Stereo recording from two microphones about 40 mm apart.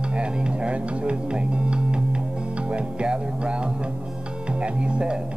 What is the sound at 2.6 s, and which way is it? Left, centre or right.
Music, right.